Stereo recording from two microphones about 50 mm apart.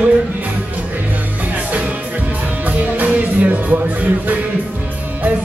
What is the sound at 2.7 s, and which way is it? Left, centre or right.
Music, right.